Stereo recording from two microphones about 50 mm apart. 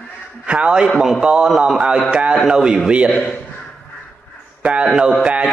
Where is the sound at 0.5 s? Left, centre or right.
Centre.